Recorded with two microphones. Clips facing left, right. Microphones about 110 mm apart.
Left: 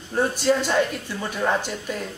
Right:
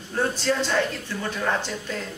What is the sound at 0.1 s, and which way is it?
A man's voice, 15° left (ahead or behind).